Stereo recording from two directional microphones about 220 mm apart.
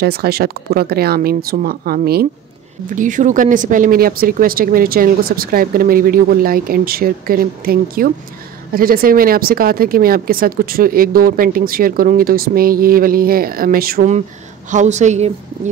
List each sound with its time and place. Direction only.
0.0 s speech: 45° right (ahead or behind)